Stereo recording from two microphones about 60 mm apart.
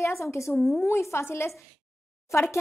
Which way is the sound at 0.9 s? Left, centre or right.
Left.